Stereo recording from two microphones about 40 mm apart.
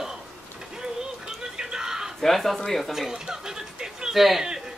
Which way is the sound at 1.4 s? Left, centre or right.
Centre.